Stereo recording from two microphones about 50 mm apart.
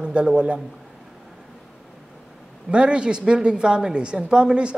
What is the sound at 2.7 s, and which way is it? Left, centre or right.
A man's voice, right.